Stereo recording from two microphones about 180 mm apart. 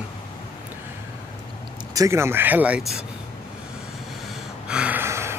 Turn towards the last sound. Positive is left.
turn(degrees=-15)  # may be behind; listen again after turning